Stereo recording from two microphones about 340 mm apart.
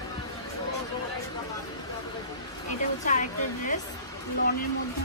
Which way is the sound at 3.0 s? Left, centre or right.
Left.